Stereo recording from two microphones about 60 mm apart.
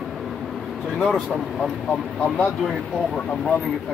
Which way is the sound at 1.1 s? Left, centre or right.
Centre.